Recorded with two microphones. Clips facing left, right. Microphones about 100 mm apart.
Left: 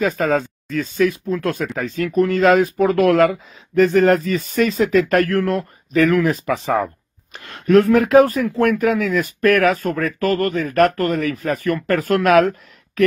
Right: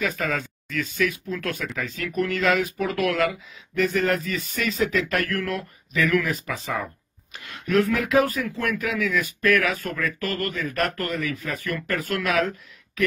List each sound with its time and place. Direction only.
0.0 s speech: 35° left (ahead or behind)
6.4 s speech: 50° left (ahead or behind)
7.3 s speech: 40° left (ahead or behind)